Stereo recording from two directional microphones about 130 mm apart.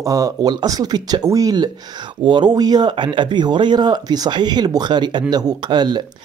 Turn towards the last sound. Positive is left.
turn(degrees=-35)  # may be behind; listen again after turning